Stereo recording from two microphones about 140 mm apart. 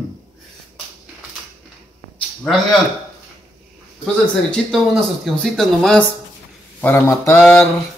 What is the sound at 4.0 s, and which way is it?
Speech, centre (ahead or behind).